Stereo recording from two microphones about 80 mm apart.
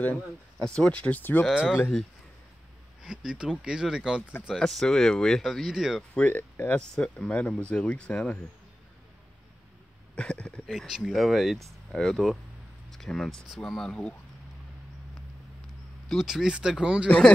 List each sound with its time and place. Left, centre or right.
0.0 s speech: centre
1.5 s speech: centre
3.3 s speech: centre
4.6 s speech: centre
6.1 s speech: left
10.1 s speech: centre
10.7 s speech: centre
16.1 s speech: centre